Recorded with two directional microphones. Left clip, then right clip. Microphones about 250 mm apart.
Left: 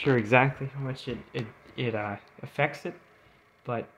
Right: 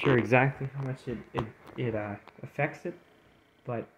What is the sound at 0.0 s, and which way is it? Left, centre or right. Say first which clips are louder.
Speech: left 2 dB; centre.